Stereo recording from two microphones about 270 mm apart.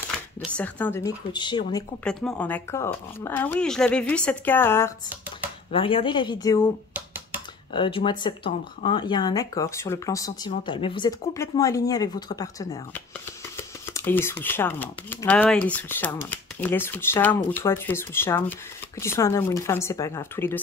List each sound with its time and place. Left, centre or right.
0.4 s speech: centre
2.0 s speech: centre
5.7 s speech: centre
7.7 s speech: centre